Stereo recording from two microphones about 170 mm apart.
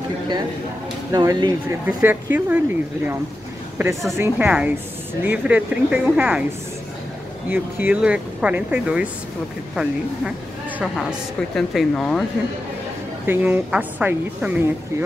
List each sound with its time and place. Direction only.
1.1 s speech: 20° right (ahead or behind)
1.9 s a woman's voice: 10° right (ahead or behind)
4.2 s a woman's voice: 10° right (ahead or behind)
7.4 s a woman's voice: 10° right (ahead or behind)
10.8 s speech: 5° right (ahead or behind)
13.3 s a woman's voice: 10° right (ahead or behind)